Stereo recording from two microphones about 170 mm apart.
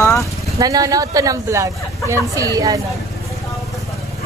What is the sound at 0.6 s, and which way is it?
A man's voice, 20° right (ahead or behind).